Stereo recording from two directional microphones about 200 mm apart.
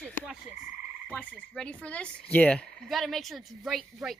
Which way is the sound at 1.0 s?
5° left (ahead or behind).